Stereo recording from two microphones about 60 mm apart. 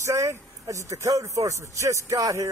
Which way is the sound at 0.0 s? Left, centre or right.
Right.